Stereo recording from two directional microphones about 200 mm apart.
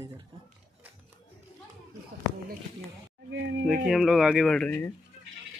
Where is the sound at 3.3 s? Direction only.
65° right (ahead or behind).